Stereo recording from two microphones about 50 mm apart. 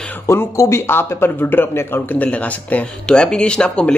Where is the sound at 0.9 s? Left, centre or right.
Left.